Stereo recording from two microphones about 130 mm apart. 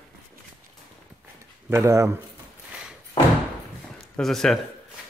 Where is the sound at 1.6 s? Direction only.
25° right (ahead or behind).